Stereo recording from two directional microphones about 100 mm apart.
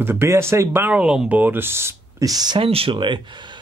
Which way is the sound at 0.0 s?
25° right (ahead or behind).